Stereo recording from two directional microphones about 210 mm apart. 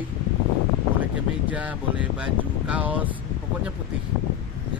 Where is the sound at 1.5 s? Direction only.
5° right (ahead or behind).